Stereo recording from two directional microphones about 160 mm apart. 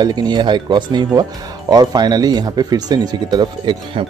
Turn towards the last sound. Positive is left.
turn(degrees=-30)  # may be behind; listen again after turning